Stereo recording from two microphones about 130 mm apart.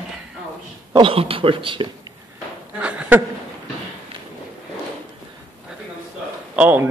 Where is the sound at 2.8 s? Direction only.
10° right (ahead or behind).